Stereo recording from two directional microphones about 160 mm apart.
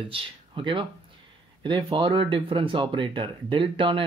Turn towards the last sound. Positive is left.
turn(degrees=-30)  # may be behind; listen again after turning